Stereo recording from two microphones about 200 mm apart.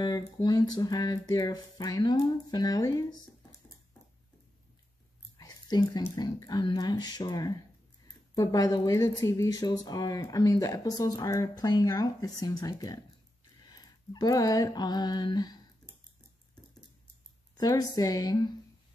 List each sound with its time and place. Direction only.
0.0 s speech: 20° left (ahead or behind)
5.4 s speech: 20° left (ahead or behind)
13.7 s a sound: 20° left (ahead or behind)
17.6 s speech: 20° left (ahead or behind)